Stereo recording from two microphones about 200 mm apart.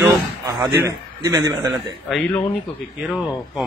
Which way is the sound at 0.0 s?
15° right (ahead or behind).